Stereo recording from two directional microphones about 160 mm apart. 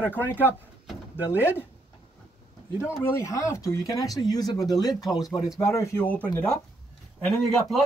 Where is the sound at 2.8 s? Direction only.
15° left (ahead or behind).